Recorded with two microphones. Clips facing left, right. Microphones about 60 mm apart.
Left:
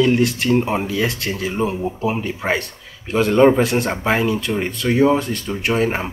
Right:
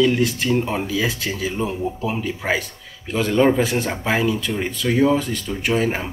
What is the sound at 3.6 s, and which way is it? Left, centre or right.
Speech, left.